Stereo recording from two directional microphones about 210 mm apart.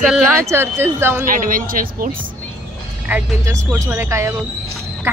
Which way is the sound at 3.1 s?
5° right (ahead or behind).